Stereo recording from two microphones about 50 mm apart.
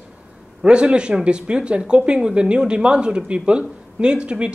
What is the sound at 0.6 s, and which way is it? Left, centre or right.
A man's voice, centre.